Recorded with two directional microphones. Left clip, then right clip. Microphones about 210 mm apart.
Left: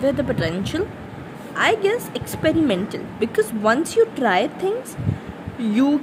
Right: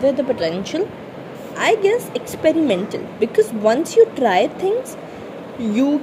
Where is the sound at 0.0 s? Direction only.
15° left (ahead or behind).